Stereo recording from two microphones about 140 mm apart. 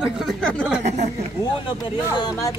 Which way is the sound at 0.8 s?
55° right (ahead or behind).